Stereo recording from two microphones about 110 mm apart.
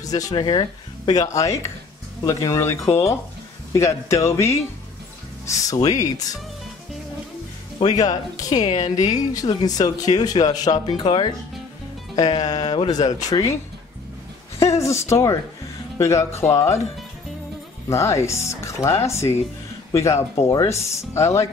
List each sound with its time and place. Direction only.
0.0 s speech: 35° left (ahead or behind)
5.7 s speech: 35° left (ahead or behind)
7.8 s speech: 35° left (ahead or behind)
14.8 s speech: 25° left (ahead or behind)
17.8 s speech: 25° left (ahead or behind)